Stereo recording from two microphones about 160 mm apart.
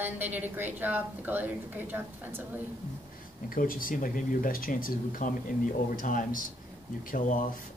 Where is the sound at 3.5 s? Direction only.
60° left (ahead or behind).